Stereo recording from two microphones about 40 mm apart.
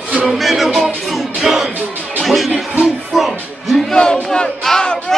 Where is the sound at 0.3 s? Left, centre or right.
Centre.